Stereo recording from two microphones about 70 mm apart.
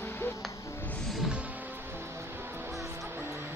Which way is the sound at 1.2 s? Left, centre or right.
Centre.